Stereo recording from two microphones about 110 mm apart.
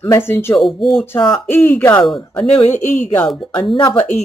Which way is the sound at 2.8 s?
90° left.